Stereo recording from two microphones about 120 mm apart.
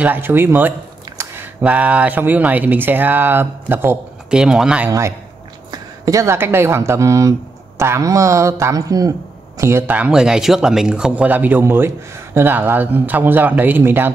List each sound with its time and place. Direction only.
0.0 s speech: 15° right (ahead or behind)
4.3 s speech: 5° right (ahead or behind)
5.7 s speech: 30° right (ahead or behind)
9.9 s speech: 10° right (ahead or behind)